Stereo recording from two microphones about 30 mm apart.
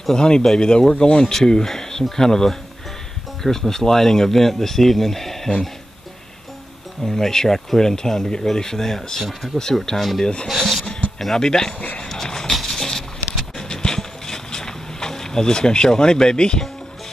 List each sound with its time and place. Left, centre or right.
0.1 s speech: left
1.3 s speech: centre
7.0 s speech: centre
9.9 s speech: centre
10.2 s speech: left
10.5 s speech: centre
11.1 s speech: centre
12.1 s horse: centre
12.4 s a sound: centre; by 16.6 s left